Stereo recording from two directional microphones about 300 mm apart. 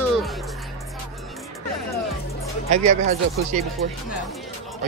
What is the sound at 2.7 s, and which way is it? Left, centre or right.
Speech, right.